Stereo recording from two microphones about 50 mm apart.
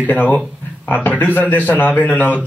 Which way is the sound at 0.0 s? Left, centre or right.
Left.